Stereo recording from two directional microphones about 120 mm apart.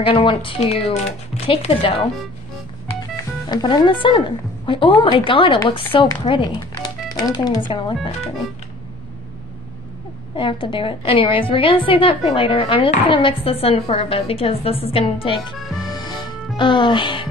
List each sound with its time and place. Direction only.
0.0 s a woman's voice: 45° left (ahead or behind)
3.0 s music: 30° left (ahead or behind)
4.6 s a woman's voice: 45° left (ahead or behind)
10.3 s a woman's voice: 45° left (ahead or behind)
15.5 s speech: centre (ahead or behind)
15.8 s music: 35° left (ahead or behind)
16.5 s a woman's voice: 45° left (ahead or behind)